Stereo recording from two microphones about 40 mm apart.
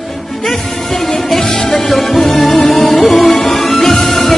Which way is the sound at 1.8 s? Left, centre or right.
Centre.